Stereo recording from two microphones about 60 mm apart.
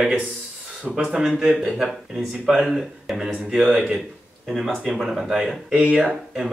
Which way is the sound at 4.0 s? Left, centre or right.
Centre.